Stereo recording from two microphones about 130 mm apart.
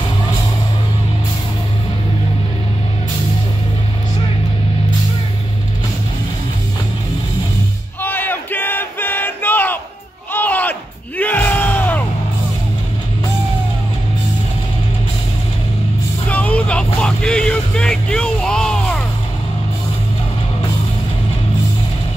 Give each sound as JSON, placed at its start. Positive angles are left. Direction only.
{"t": 8.0, "sound": "battle cry", "side_deg": 15}
{"t": 10.3, "sound": "music", "side_deg": 15}
{"t": 16.3, "sound": "vehicle", "side_deg": 10}